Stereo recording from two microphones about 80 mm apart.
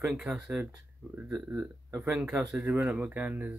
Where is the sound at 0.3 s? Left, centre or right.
Centre.